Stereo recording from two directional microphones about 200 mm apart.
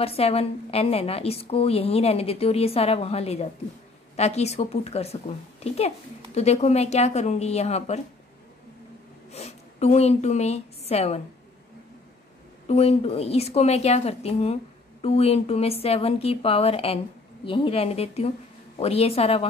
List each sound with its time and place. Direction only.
0.0 s a woman's voice: 30° left (ahead or behind)
9.3 s a woman's voice: 35° left (ahead or behind)
12.6 s a woman's voice: 30° left (ahead or behind)